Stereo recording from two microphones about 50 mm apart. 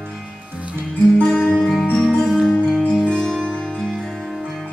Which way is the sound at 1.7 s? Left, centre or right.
Centre.